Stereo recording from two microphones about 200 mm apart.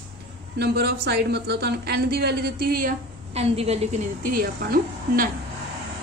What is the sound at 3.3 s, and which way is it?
A woman's voice, 30° right (ahead or behind).